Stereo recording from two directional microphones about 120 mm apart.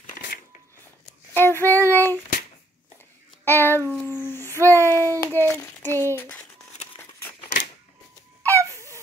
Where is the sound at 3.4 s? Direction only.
20° left (ahead or behind).